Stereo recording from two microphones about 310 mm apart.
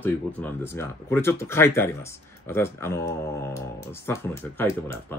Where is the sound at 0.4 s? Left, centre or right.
Centre.